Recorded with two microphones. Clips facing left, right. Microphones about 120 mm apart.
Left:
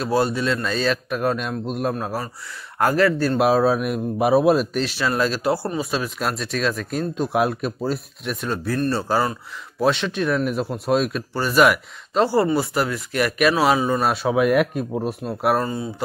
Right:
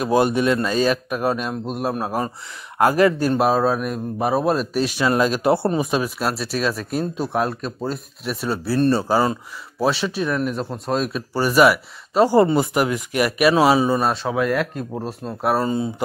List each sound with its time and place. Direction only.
0.0 s speech: 15° right (ahead or behind)
2.0 s speech: 15° right (ahead or behind)
3.3 s speech: centre (ahead or behind)
4.7 s speech: 15° right (ahead or behind)
5.4 s a man's voice: 25° right (ahead or behind)
6.1 s speech: 5° right (ahead or behind)
7.3 s speech: 10° left (ahead or behind)
11.3 s speech: 10° right (ahead or behind)
14.0 s speech: 10° left (ahead or behind)
15.6 s a man's voice: 20° right (ahead or behind)